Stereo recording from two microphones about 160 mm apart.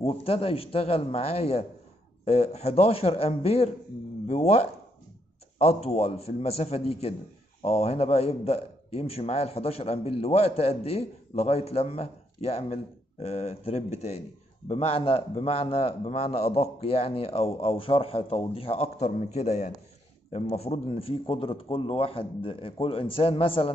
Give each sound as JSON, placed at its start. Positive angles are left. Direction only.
{"t": 0.0, "sound": "a man's voice", "side_deg": 40}